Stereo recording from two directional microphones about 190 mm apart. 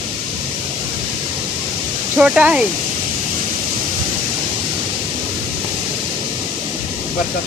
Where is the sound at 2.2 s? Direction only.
5° right (ahead or behind).